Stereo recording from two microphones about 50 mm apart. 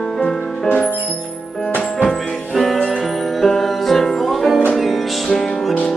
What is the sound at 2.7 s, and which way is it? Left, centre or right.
Music, centre.